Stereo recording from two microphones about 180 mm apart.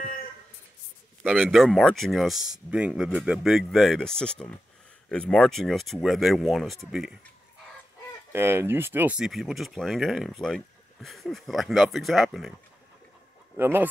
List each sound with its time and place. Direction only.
0.0 s a sound: 50° left (ahead or behind)
1.2 s speech: centre (ahead or behind)
8.3 s speech: 15° right (ahead or behind)
13.6 s speech: 10° right (ahead or behind)